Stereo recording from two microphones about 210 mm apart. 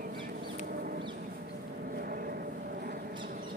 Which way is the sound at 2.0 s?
45° right (ahead or behind).